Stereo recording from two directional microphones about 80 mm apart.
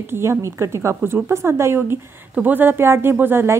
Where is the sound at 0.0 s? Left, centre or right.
Right.